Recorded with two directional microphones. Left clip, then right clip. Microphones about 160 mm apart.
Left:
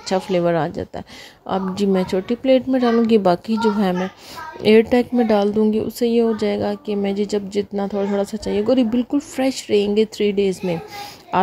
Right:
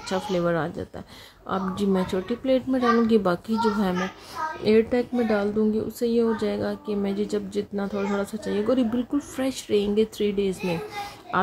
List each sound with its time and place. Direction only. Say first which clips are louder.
0.1 s speech: left 6 dB; 40° left (ahead or behind)
4.6 s speech: left 7 dB; 50° left (ahead or behind)